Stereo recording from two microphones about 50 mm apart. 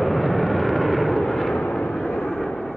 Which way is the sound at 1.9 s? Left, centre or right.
Centre.